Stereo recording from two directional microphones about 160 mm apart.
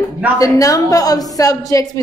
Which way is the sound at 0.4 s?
20° left (ahead or behind).